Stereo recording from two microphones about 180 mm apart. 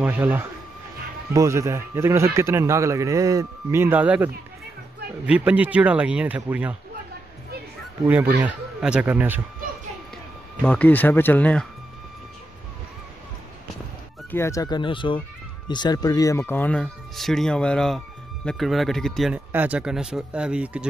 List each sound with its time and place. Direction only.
0.0 s a man's voice: 10° right (ahead or behind)
8.1 s speech: 10° right (ahead or behind)
10.6 s speech: 10° left (ahead or behind)
14.3 s speech: 15° left (ahead or behind); by 20.8 s 5° right (ahead or behind)